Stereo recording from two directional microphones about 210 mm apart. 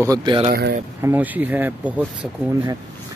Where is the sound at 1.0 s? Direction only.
10° right (ahead or behind).